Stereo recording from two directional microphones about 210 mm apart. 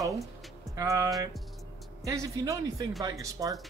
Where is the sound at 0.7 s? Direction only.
15° right (ahead or behind).